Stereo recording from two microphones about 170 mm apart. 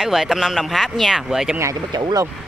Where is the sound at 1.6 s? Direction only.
20° right (ahead or behind).